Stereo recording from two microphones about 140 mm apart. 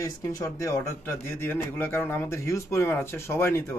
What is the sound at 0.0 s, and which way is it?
A man's voice, 20° left (ahead or behind).